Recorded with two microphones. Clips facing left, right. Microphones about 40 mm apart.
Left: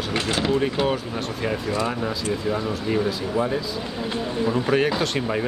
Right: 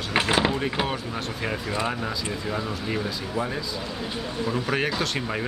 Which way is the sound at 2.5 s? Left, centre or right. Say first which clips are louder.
Left 3 dB; centre.